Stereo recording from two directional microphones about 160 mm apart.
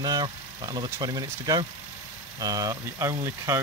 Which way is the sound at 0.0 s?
25° right (ahead or behind).